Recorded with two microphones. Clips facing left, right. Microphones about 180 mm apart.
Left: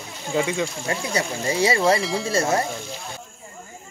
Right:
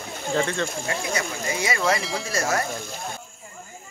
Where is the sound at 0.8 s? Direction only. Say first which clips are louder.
Left 2 dB; 35° left (ahead or behind).